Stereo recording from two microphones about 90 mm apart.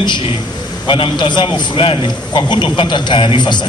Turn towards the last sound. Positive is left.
turn(degrees=55)  # may be behind; listen again after turning